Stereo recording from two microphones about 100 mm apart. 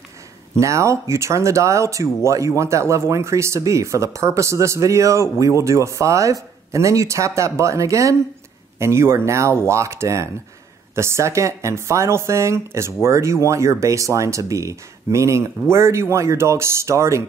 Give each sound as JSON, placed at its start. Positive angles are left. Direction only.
{"t": 0.6, "sound": "speech", "side_deg": -30}